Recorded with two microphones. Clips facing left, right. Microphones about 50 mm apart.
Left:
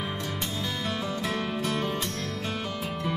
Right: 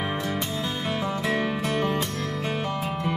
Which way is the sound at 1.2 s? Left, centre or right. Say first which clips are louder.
Right 4 dB; right.